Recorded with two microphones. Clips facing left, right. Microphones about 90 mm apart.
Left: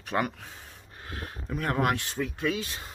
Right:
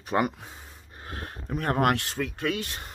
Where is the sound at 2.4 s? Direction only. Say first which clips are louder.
Left 1 dB; 55° right (ahead or behind).